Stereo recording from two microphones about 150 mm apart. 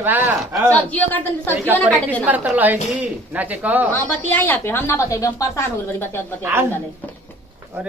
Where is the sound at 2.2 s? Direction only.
10° right (ahead or behind).